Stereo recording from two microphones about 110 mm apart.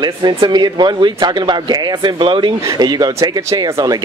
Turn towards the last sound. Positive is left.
turn(degrees=-35)  # may be behind; listen again after turning